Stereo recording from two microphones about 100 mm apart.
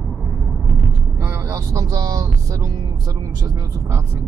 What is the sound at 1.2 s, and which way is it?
Vehicle, 30° right (ahead or behind).